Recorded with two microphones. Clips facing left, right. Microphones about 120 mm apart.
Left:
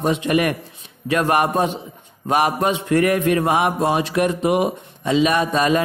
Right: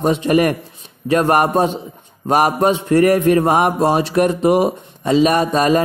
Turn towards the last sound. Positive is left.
turn(degrees=-40)  # may be behind; listen again after turning